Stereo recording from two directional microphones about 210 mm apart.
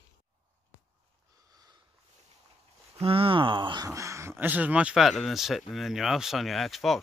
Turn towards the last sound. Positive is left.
turn(degrees=0)  # may be behind; listen again after turning